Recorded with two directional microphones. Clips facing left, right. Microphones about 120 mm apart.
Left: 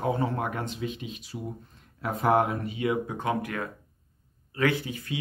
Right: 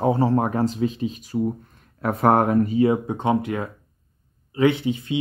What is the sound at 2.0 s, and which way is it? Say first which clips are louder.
Speech: right 5 dB; 60° right (ahead or behind).